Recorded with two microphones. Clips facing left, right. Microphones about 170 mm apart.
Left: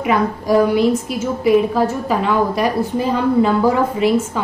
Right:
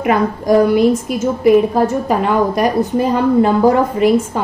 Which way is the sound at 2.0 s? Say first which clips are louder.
Right 2 dB; 50° right (ahead or behind).